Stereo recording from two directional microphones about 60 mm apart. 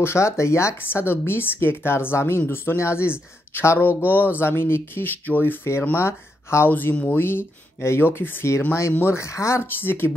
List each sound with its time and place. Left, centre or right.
0.0 s speech: left
0.8 s speech: left
3.8 s speech: left
6.7 s speech: left
9.0 s speech: left
9.7 s speech: left